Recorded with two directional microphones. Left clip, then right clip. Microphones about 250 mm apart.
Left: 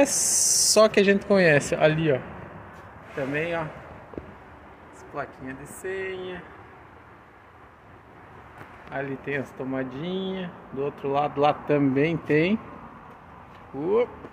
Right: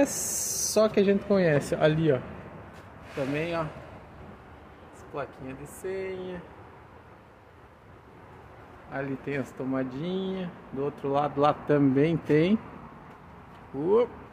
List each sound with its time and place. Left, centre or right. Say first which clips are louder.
0.0 s speech: left 5 dB; centre
3.3 s speech: left 3 dB; centre
5.1 s speech: left 2 dB; centre
8.9 s speech: left 3 dB; centre
13.7 s speech: even; centre